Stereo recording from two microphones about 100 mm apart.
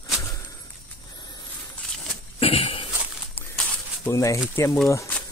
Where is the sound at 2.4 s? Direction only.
70° left (ahead or behind).